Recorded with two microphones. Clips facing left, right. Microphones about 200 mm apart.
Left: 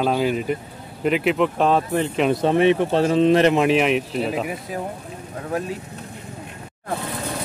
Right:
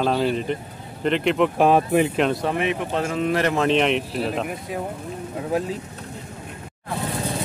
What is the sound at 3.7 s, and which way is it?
Speech, 5° left (ahead or behind).